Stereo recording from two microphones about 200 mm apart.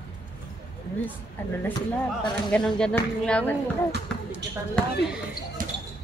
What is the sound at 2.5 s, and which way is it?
Speech, 5° left (ahead or behind).